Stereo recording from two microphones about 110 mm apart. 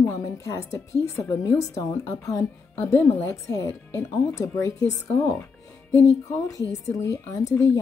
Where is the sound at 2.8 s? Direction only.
15° left (ahead or behind).